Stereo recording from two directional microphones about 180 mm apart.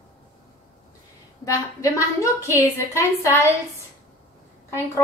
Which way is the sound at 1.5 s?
15° left (ahead or behind).